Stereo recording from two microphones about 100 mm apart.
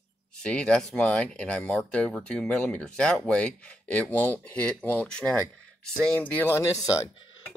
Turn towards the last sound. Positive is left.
turn(degrees=30)  # may be behind; listen again after turning